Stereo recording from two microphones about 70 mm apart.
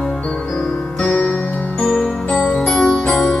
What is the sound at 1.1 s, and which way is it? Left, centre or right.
Music, left.